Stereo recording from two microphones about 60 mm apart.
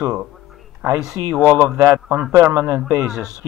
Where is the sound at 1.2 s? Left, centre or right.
Right.